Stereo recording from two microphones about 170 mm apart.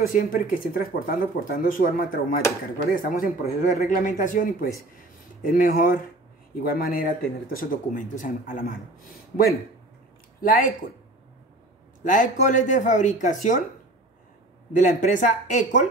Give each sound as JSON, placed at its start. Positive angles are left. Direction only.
{"t": 0.0, "sound": "speech", "side_deg": 55}
{"t": 12.0, "sound": "speech", "side_deg": 50}
{"t": 14.7, "sound": "speech", "side_deg": 50}